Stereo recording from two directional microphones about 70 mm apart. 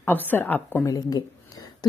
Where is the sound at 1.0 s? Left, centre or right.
Left.